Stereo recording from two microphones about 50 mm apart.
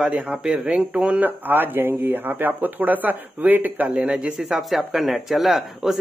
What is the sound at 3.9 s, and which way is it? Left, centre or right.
Speech, right.